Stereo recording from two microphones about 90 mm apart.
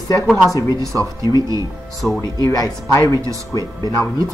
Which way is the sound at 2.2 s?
45° left (ahead or behind).